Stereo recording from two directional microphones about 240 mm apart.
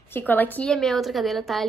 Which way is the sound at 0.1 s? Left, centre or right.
Centre.